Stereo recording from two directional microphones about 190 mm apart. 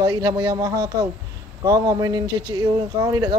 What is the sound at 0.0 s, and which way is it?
Speech, 20° right (ahead or behind).